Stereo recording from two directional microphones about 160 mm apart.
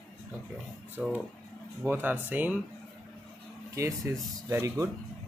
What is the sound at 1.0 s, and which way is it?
Speech, 10° right (ahead or behind).